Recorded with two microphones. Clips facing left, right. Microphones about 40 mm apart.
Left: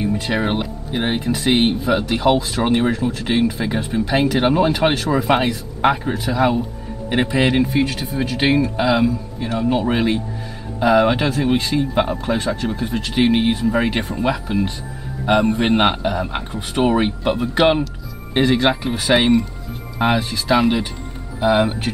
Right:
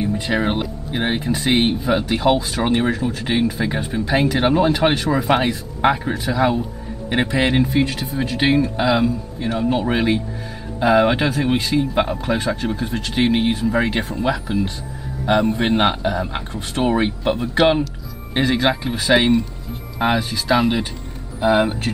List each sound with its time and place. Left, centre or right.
0.3 s speech: centre
10.8 s speech: centre
15.2 s a man's voice: centre